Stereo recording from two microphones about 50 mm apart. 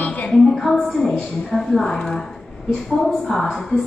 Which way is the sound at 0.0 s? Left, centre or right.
Left.